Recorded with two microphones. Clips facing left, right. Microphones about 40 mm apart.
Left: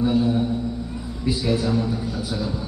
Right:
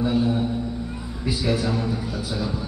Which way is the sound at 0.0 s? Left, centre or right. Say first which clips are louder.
Left 2 dB; centre.